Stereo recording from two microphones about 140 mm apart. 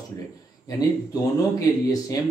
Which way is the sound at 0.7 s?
25° left (ahead or behind).